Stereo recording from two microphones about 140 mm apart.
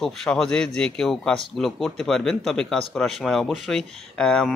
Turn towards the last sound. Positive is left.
turn(degrees=5)  # may be behind; listen again after turning